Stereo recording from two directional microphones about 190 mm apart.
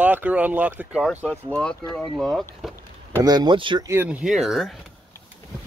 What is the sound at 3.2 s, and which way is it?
Speech, 20° right (ahead or behind).